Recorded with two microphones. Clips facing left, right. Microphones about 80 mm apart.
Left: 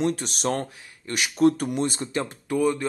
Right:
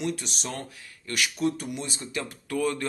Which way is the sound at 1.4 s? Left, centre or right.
Left.